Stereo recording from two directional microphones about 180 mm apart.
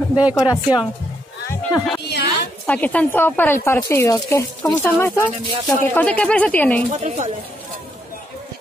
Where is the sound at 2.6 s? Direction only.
10° left (ahead or behind).